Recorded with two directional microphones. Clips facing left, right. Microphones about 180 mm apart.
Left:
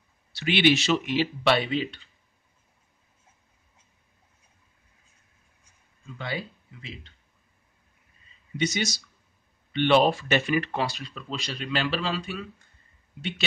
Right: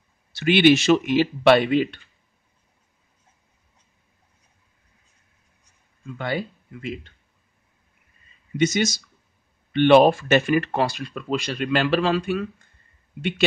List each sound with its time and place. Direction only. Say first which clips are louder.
0.3 s speech: right 6 dB; 50° right (ahead or behind)
6.1 s speech: right 6 dB; 55° right (ahead or behind)
8.5 s speech: right 7 dB; 50° right (ahead or behind)